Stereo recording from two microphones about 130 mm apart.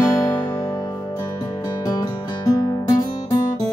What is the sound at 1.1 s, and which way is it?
Music, 30° left (ahead or behind).